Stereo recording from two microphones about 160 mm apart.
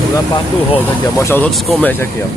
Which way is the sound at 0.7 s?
15° left (ahead or behind).